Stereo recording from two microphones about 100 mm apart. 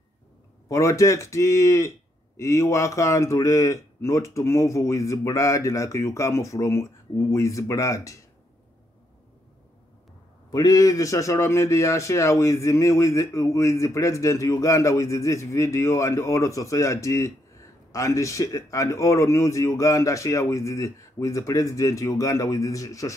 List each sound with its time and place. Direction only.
0.7 s a man's voice: 30° left (ahead or behind)
10.5 s a man's voice: 35° left (ahead or behind)